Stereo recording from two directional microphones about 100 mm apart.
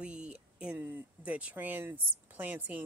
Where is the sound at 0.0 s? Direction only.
10° right (ahead or behind).